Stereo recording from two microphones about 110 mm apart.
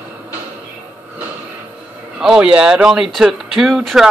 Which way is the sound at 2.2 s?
5° right (ahead or behind).